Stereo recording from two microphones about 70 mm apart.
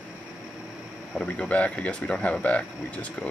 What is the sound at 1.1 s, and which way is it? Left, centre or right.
Speech, centre.